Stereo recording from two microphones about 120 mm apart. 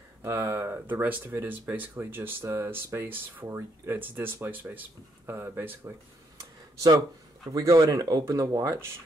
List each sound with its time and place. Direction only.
0.2 s speech: 20° right (ahead or behind)
7.5 s speech: 30° right (ahead or behind)